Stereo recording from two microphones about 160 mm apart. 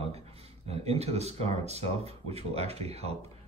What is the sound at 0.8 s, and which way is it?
Speech, 40° right (ahead or behind).